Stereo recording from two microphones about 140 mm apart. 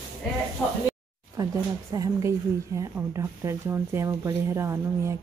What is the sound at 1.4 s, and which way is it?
Speech, 25° right (ahead or behind).